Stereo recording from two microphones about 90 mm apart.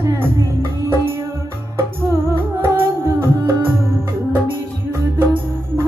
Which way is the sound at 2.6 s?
30° right (ahead or behind).